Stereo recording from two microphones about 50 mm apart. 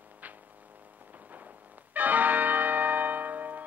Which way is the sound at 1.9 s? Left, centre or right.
Right.